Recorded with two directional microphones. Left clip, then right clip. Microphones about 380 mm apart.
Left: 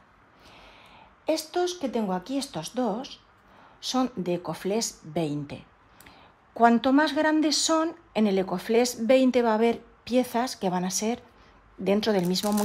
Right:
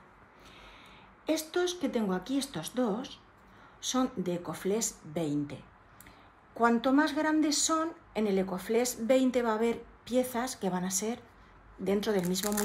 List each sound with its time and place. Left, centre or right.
1.3 s speech: centre